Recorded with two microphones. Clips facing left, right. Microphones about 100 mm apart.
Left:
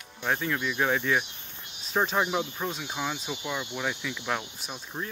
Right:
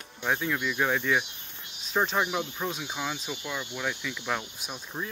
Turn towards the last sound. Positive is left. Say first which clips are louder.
# even
turn(degrees=0)  # may be behind; listen again after turning